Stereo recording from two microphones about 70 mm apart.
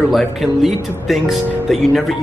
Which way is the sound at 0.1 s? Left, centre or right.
Centre.